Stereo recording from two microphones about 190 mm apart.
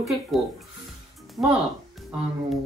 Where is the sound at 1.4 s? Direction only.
20° right (ahead or behind).